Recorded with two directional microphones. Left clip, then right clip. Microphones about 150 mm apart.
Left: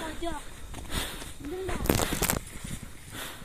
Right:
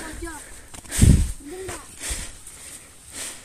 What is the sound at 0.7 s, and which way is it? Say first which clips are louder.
Chicken: right 2 dB; 30° right (ahead or behind).